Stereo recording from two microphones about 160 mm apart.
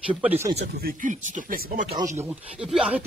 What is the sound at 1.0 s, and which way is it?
Speech, 55° right (ahead or behind).